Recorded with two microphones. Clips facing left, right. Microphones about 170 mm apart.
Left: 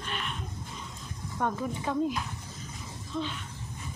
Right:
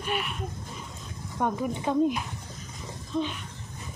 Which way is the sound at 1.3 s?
15° right (ahead or behind).